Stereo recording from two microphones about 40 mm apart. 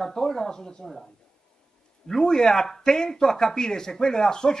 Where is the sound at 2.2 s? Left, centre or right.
Centre.